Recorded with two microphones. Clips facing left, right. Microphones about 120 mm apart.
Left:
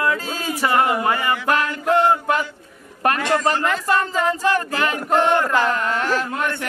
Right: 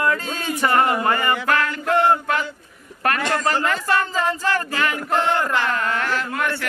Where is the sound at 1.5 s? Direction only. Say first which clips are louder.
Left 4 dB; 15° left (ahead or behind).